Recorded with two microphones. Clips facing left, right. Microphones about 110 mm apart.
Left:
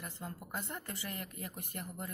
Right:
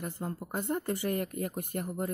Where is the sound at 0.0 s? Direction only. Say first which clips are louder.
Right 8 dB; 40° right (ahead or behind).